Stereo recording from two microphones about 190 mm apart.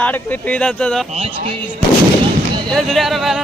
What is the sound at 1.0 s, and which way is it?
Speech, 30° right (ahead or behind).